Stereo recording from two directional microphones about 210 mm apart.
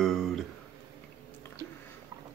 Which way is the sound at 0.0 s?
Centre (ahead or behind).